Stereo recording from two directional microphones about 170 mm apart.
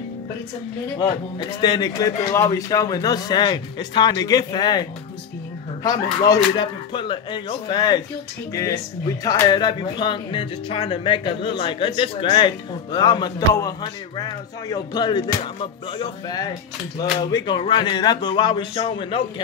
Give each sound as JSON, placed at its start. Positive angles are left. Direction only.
{"t": 0.9, "sound": "speech", "side_deg": 25}
{"t": 6.2, "sound": "speech", "side_deg": 25}
{"t": 9.2, "sound": "speech", "side_deg": 20}